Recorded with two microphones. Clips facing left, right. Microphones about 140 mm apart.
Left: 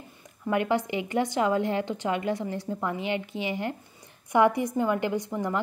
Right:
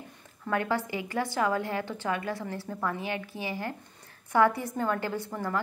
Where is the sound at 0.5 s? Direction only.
20° left (ahead or behind).